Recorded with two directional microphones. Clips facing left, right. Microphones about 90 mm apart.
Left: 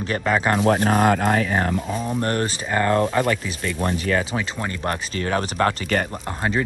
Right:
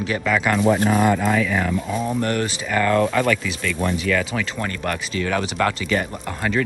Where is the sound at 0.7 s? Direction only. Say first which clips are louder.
Even; 55° left (ahead or behind).